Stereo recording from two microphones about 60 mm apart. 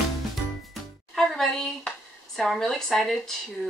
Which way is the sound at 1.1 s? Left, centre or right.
Centre.